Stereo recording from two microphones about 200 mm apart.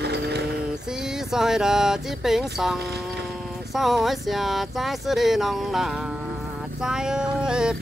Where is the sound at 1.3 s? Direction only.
Centre (ahead or behind).